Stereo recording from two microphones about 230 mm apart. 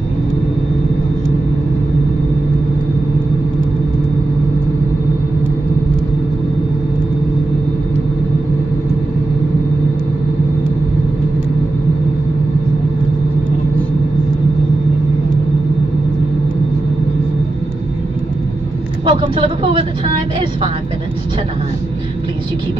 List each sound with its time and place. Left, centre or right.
19.0 s vehicle: right